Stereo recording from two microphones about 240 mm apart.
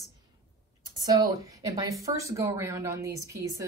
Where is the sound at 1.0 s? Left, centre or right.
Centre.